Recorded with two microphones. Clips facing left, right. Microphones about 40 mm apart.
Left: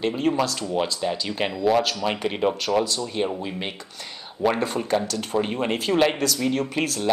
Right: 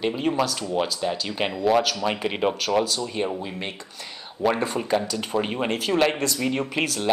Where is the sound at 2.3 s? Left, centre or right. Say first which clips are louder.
Left 1 dB; centre.